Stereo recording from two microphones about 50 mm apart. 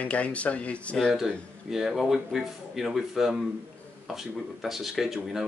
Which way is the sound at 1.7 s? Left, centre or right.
Centre.